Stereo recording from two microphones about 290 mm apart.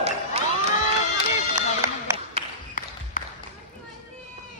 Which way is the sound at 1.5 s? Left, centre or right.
Centre.